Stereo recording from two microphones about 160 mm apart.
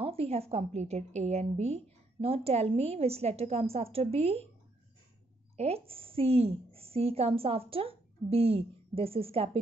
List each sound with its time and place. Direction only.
0.0 s a woman's voice: 40° right (ahead or behind)
5.6 s a woman's voice: 40° right (ahead or behind)